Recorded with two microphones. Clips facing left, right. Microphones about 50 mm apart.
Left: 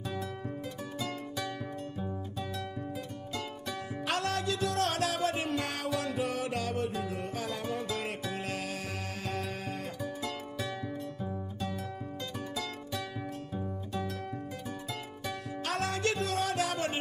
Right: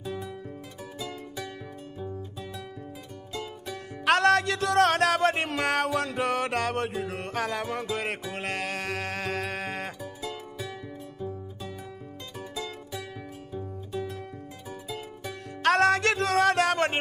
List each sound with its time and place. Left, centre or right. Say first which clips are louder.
0.9 s music: right 1 dB; centre
4.0 s music: right 11 dB; right
10.0 s music: even; centre
15.6 s music: right 11 dB; right